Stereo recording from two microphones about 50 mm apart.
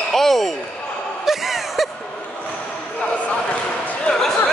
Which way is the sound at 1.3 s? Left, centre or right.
Centre.